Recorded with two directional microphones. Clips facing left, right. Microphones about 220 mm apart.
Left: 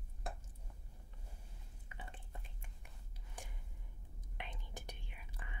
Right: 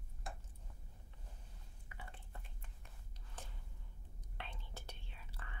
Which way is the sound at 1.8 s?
20° left (ahead or behind).